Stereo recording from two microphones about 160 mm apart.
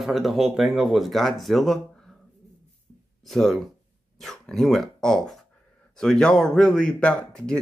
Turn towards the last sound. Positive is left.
turn(degrees=5)  # may be behind; listen again after turning